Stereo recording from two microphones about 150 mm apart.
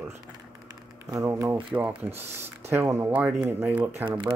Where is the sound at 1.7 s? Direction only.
10° right (ahead or behind).